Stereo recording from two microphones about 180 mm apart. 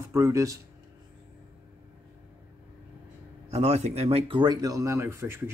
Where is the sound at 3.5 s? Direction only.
40° right (ahead or behind).